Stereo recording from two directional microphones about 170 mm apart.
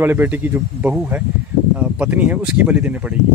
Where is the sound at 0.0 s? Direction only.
10° right (ahead or behind).